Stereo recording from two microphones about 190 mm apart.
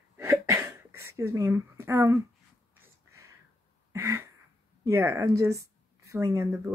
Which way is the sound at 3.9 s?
15° right (ahead or behind).